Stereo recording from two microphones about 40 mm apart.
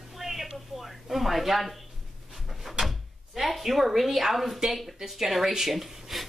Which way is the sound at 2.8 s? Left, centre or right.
Centre.